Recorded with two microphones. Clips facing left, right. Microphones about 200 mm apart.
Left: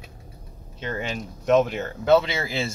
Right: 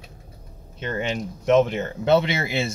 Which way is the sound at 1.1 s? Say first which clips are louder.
Right 1 dB; 20° right (ahead or behind).